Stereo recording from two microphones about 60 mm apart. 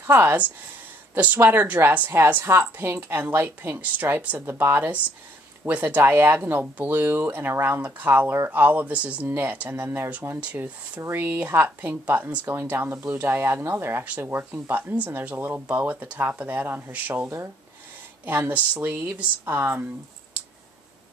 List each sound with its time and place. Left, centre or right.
0.0 s speech: right
1.4 s speech: right
2.4 s speech: right
3.0 s speech: right
4.5 s speech: right
5.7 s speech: right
6.0 s speech: right
7.5 s speech: right
7.8 s speech: right
9.3 s speech: right
10.4 s speech: right
18.5 s speech: right